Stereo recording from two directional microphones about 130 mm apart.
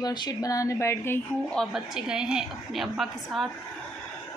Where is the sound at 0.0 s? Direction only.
30° left (ahead or behind).